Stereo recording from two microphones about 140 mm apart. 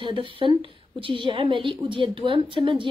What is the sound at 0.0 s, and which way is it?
A woman's voice, 35° right (ahead or behind).